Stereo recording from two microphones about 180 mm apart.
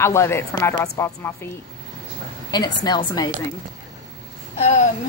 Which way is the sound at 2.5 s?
20° left (ahead or behind).